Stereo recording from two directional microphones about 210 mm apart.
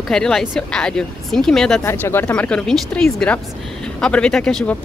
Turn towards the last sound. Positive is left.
turn(degrees=5)  # may be behind; listen again after turning